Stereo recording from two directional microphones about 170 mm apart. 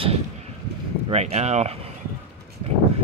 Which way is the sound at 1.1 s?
40° right (ahead or behind).